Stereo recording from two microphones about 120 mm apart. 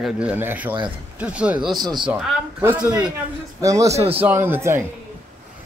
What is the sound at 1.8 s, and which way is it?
Speech, 35° right (ahead or behind).